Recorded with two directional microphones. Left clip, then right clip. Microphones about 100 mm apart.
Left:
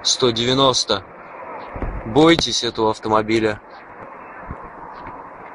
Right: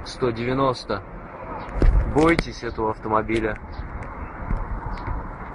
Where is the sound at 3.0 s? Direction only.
20° left (ahead or behind).